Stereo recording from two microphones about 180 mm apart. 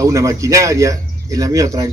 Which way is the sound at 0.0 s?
15° right (ahead or behind).